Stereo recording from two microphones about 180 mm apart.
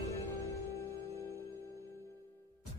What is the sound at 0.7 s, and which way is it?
Music, 60° right (ahead or behind).